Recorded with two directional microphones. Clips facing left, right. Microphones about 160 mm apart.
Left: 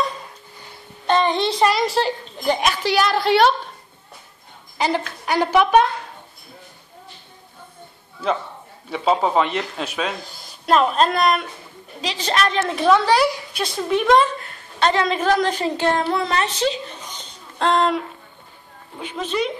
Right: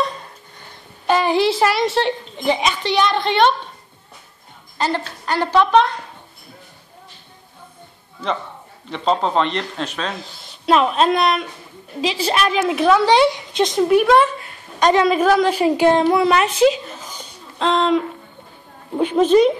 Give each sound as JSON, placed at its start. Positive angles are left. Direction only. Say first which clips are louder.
{"t": 1.0, "sound": "a woman's voice", "louder": "right 2 dB", "side_deg": -5}
{"t": 4.7, "sound": "a woman's voice", "louder": "even", "side_deg": 10}
{"t": 8.9, "sound": "a woman's voice", "louder": "even", "side_deg": 5}
{"t": 13.0, "sound": "a woman's voice", "louder": "right 4 dB", "side_deg": -20}
{"t": 14.8, "sound": "a woman's voice", "louder": "right 5 dB", "side_deg": -15}
{"t": 16.5, "sound": "a sound", "louder": "right 8 dB", "side_deg": -5}
{"t": 17.6, "sound": "a woman's voice", "louder": "right 2 dB", "side_deg": 5}
{"t": 18.9, "sound": "a woman's voice", "louder": "right 11 dB", "side_deg": -45}